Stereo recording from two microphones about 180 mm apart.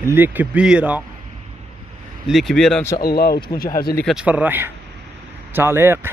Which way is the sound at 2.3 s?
Centre (ahead or behind).